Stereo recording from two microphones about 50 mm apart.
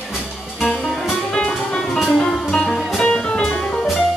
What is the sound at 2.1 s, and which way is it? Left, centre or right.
Music, centre.